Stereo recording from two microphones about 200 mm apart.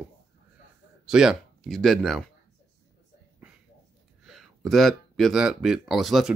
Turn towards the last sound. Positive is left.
turn(degrees=0)  # may be behind; listen again after turning